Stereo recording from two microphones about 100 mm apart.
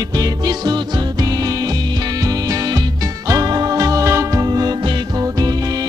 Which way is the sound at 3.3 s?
40° right (ahead or behind).